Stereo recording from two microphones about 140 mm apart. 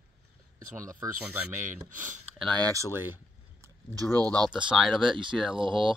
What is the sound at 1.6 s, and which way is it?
Speech, 65° right (ahead or behind).